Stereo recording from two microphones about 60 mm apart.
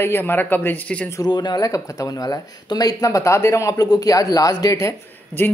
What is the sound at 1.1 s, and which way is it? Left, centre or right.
Speech, left.